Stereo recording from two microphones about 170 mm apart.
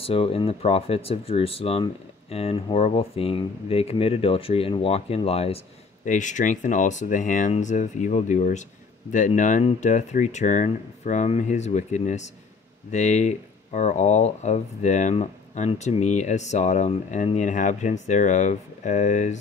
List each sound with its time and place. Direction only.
0.0 s speech: 35° left (ahead or behind)